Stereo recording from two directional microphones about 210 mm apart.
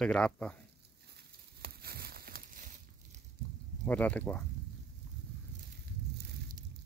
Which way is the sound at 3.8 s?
5° left (ahead or behind).